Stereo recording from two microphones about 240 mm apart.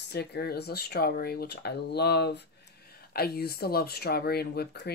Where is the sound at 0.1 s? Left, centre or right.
Left.